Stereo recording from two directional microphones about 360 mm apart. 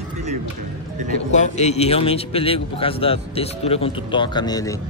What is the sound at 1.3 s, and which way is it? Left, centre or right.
A man's voice, centre.